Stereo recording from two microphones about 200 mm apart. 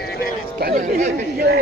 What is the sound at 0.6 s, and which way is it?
Chatter, 45° right (ahead or behind).